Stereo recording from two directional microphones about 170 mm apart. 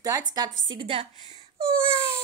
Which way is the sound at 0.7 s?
30° right (ahead or behind).